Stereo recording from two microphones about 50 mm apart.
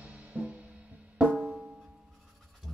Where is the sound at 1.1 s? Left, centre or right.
Centre.